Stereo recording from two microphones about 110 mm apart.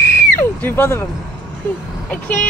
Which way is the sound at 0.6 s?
20° left (ahead or behind).